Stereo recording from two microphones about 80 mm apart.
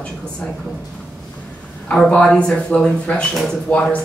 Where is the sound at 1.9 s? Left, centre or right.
Centre.